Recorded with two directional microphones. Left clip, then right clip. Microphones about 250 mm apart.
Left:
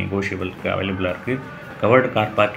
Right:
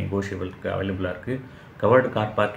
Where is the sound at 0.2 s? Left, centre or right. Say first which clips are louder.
Left 5 dB; centre.